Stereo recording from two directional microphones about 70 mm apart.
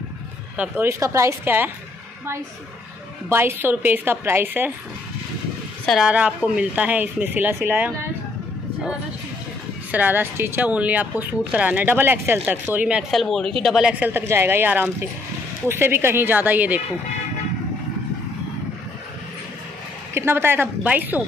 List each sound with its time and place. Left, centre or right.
0.7 s a woman's voice: right
3.3 s a woman's voice: right
6.0 s speech: centre
9.8 s speech: right
10.7 s speech: right
13.1 s speech: centre
13.9 s speech: right
14.2 s a woman's voice: right
20.2 s a woman's voice: right